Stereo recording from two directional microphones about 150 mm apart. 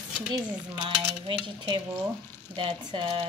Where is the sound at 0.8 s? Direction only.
30° right (ahead or behind).